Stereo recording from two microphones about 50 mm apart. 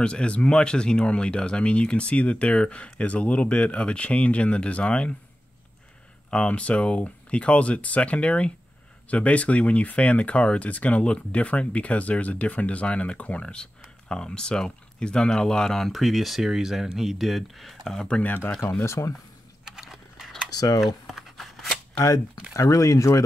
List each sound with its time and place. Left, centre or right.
0.0 s speech: left
6.3 s speech: left
15.9 s speech: centre
18.2 s speech: left
18.8 s speech: left
19.6 s a sound: centre
20.8 s shuffling cards: centre
22.5 s speech: left